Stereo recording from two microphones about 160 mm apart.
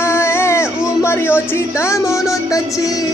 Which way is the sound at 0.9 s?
15° left (ahead or behind).